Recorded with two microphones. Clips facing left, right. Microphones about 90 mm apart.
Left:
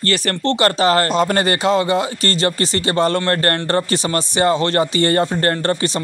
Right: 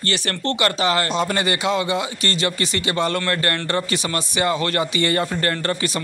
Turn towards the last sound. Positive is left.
turn(degrees=30)  # may be behind; listen again after turning